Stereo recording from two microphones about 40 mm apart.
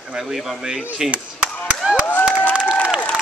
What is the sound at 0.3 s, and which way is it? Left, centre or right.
Speech, centre.